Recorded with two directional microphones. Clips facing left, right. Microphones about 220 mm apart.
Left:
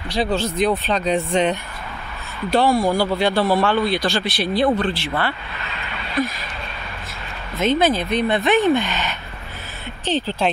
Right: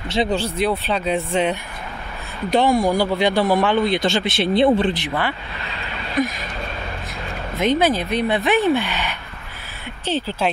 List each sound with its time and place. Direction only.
0.1 s speech: 20° right (ahead or behind)
0.6 s speech: 10° right (ahead or behind)
7.5 s speech: 15° right (ahead or behind)